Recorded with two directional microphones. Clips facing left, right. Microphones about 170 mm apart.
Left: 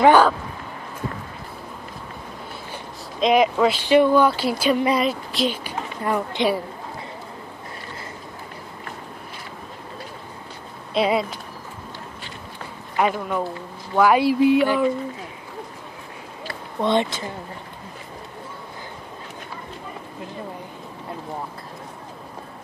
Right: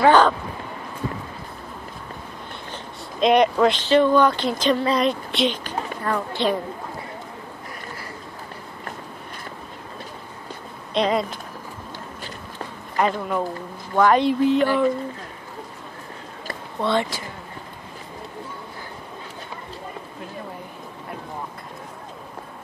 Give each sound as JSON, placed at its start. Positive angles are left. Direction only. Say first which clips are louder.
{"t": 0.0, "sound": "a sound", "louder": "left 1 dB", "side_deg": 10}
{"t": 3.2, "sound": "a woman's voice", "louder": "right 1 dB", "side_deg": 0}
{"t": 10.9, "sound": "speech", "louder": "left 1 dB", "side_deg": 5}
{"t": 12.9, "sound": "speech", "louder": "even", "side_deg": 5}
{"t": 16.8, "sound": "speech", "louder": "left 2 dB", "side_deg": 20}